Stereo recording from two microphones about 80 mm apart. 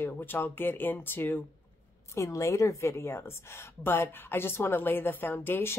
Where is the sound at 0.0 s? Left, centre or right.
Left.